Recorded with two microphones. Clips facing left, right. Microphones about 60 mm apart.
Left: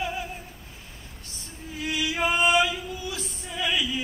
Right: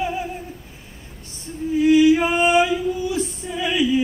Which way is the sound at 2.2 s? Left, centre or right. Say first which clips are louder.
Right 5 dB; right.